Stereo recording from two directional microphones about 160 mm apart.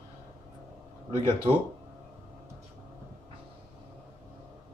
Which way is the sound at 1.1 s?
35° right (ahead or behind).